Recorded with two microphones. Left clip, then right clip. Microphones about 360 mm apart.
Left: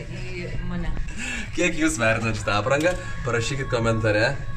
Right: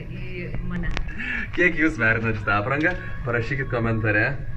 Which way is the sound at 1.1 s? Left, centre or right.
Left.